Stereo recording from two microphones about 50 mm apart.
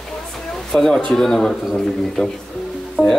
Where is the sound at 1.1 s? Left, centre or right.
Centre.